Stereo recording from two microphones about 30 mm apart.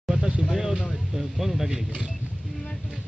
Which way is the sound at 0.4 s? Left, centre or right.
Centre.